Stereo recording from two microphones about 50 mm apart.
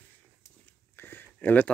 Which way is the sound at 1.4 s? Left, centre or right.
Left.